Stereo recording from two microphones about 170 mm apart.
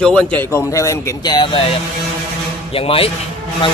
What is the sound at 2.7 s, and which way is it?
Speech, 35° left (ahead or behind).